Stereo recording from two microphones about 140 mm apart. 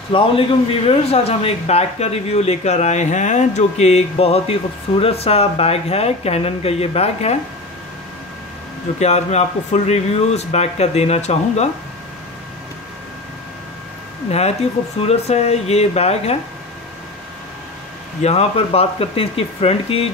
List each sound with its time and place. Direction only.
0.1 s a man's voice: 40° left (ahead or behind)
9.0 s a man's voice: 50° left (ahead or behind)
15.0 s a man's voice: 50° left (ahead or behind)
18.2 s a man's voice: 45° left (ahead or behind)